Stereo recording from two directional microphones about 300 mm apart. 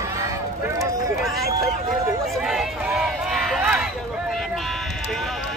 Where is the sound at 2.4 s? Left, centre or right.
Centre.